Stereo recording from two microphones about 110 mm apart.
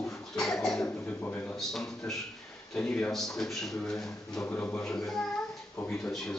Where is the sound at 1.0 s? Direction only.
15° left (ahead or behind).